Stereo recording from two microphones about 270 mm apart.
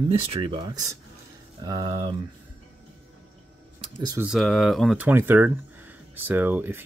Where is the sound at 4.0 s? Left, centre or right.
Centre.